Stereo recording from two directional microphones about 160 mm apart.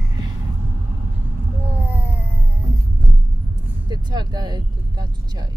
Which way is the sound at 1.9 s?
10° right (ahead or behind).